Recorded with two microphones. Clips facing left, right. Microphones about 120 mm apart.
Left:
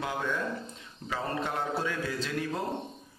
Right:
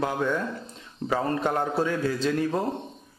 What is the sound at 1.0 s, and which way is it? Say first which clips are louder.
Speech: right 7 dB; 50° right (ahead or behind).